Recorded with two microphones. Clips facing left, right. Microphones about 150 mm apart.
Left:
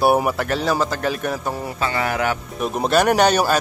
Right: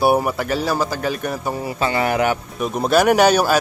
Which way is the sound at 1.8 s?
25° right (ahead or behind).